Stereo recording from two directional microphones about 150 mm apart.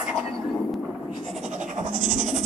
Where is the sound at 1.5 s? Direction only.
55° right (ahead or behind).